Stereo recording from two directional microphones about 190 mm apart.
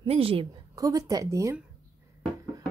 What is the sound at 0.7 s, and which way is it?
Speech, 15° right (ahead or behind).